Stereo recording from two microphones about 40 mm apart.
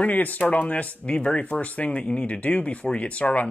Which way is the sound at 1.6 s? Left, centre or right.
Left.